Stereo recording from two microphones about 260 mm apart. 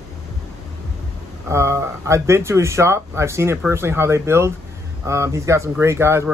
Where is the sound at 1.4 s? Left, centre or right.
Centre.